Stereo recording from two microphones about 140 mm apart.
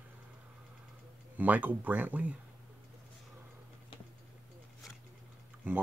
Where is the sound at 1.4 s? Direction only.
10° right (ahead or behind).